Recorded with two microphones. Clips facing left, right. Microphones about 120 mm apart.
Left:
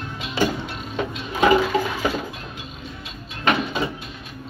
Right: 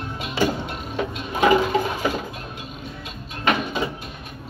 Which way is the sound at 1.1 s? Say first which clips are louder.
Even; 45° right (ahead or behind).